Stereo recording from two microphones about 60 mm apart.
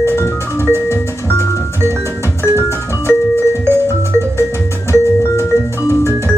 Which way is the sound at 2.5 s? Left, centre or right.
Right.